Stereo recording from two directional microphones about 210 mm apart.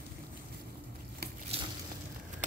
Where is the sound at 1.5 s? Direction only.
30° right (ahead or behind).